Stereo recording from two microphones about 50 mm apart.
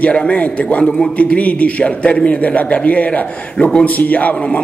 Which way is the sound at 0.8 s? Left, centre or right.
Centre.